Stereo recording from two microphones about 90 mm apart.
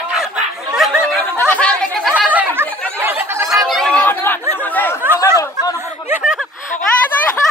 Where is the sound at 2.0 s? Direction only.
15° right (ahead or behind).